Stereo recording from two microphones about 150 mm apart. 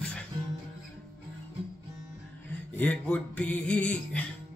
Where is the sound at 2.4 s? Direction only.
10° left (ahead or behind).